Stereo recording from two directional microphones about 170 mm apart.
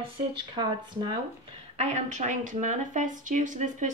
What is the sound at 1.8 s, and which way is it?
Speech, 45° right (ahead or behind).